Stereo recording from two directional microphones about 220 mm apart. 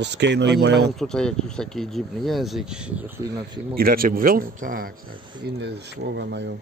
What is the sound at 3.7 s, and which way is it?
Speech, 40° right (ahead or behind).